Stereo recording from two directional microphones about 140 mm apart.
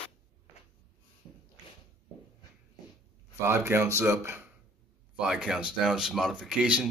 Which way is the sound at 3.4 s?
20° right (ahead or behind).